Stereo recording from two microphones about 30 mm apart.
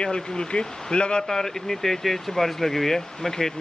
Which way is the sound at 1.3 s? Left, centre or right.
Centre.